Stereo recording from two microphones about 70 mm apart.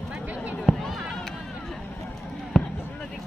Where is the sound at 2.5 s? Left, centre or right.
Centre.